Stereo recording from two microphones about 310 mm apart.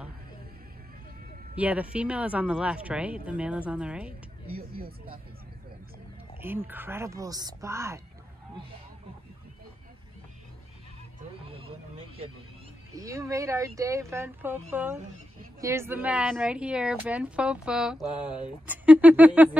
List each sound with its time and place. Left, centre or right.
1.5 s speech: centre
4.6 s speech: right
6.4 s speech: centre
11.4 s a sound: centre
12.9 s speech: centre